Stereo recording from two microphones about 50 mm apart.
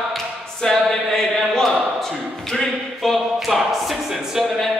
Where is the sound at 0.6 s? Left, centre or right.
Centre.